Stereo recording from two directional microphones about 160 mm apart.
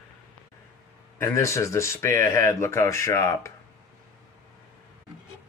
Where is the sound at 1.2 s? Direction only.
15° left (ahead or behind).